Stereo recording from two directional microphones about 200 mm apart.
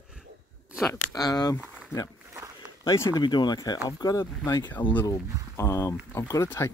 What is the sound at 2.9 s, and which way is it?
Speech, 15° left (ahead or behind).